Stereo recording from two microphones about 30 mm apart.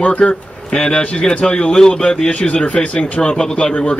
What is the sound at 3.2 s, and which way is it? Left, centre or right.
Speech, left.